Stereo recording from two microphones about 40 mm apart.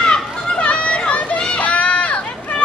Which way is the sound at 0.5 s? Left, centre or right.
Left.